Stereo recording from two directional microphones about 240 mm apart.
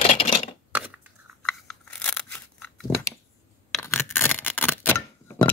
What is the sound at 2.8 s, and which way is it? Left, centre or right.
Scissors, centre.